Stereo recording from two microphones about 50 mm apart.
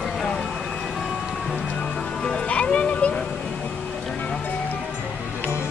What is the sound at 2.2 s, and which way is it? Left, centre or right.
Speech, left.